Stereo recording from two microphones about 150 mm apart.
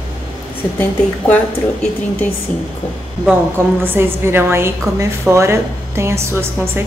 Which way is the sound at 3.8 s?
15° right (ahead or behind).